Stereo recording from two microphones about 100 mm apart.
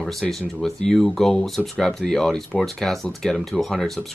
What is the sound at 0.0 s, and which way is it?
Speech, centre (ahead or behind).